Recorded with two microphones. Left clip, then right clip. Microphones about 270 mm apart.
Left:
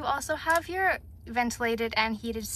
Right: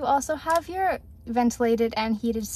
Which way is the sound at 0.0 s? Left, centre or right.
Right.